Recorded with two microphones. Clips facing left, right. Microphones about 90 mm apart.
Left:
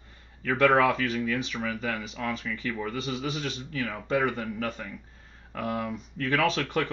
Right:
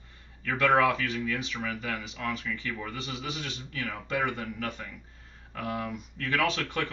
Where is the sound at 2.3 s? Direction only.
30° left (ahead or behind).